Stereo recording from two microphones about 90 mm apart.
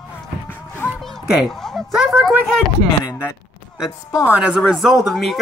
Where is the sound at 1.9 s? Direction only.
5° right (ahead or behind).